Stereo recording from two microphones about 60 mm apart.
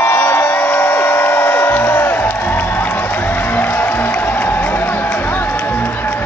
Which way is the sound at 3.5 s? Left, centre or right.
Left.